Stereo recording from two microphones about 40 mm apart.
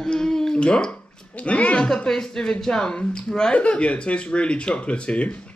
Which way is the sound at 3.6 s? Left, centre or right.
Left.